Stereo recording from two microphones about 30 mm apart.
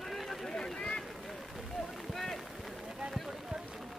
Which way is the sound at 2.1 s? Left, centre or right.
Centre.